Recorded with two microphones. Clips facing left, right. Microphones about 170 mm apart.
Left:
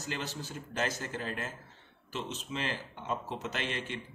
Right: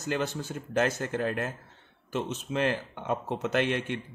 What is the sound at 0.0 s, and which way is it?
Speech, 50° right (ahead or behind).